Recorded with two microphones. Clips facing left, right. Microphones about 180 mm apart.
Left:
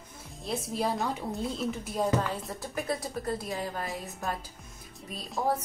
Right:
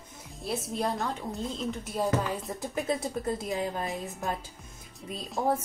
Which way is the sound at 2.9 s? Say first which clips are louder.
Right 2 dB; 20° right (ahead or behind).